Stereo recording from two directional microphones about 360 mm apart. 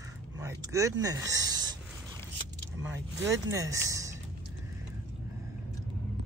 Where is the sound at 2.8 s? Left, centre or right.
Centre.